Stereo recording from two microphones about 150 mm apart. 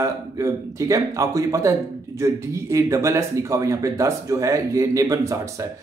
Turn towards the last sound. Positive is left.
turn(degrees=-20)  # may be behind; listen again after turning